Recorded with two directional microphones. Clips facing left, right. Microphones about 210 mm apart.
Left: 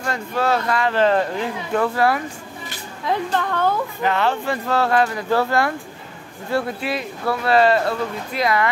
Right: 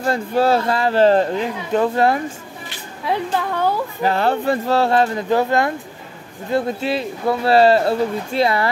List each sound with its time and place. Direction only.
0.0 s speech: 30° right (ahead or behind)
1.4 s speech: 20° right (ahead or behind)
3.1 s a woman's voice: 10° right (ahead or behind)
4.0 s speech: 35° right (ahead or behind)